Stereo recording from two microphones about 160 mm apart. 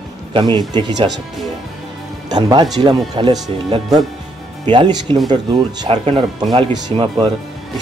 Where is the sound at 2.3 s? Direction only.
25° right (ahead or behind).